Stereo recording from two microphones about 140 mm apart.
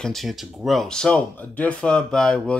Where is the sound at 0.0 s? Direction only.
Centre (ahead or behind).